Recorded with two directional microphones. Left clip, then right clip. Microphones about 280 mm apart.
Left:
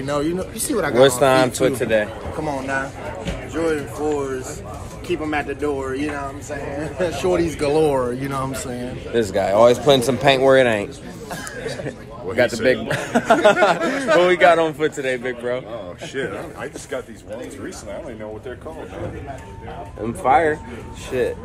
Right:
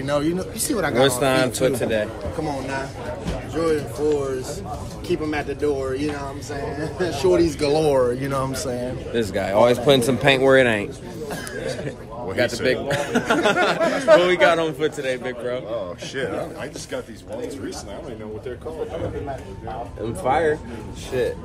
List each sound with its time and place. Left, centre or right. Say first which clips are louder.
0.0 s speech: even; centre
0.9 s speech: left 5 dB; centre
3.5 s speech: even; centre
9.1 s a man's voice: left 4 dB; centre
12.6 s speech: left 2 dB; centre
13.7 s a man's voice: right 2 dB; centre
14.2 s a man's voice: left 3 dB; centre
20.2 s a man's voice: left 4 dB; centre